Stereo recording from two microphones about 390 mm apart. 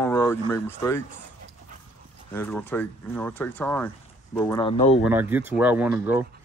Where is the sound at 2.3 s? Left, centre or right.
Centre.